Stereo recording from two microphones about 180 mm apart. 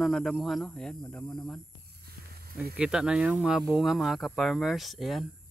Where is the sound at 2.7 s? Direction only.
5° right (ahead or behind).